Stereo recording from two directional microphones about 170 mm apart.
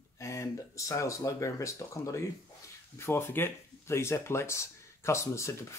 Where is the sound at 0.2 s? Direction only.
20° left (ahead or behind).